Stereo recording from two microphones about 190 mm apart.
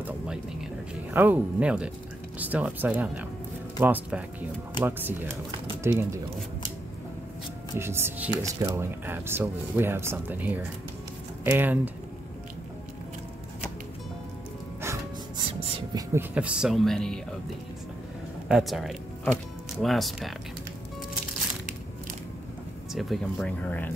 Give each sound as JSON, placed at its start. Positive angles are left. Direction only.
{"t": 0.0, "sound": "a sound", "side_deg": -5}
{"t": 1.1, "sound": "speech", "side_deg": -10}
{"t": 7.7, "sound": "speech", "side_deg": -15}
{"t": 14.8, "sound": "music", "side_deg": -15}
{"t": 15.9, "sound": "speech", "side_deg": -15}
{"t": 18.5, "sound": "speech", "side_deg": 0}
{"t": 22.9, "sound": "speech", "side_deg": 5}